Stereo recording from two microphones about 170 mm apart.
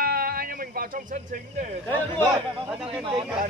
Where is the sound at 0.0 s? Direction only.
60° right (ahead or behind).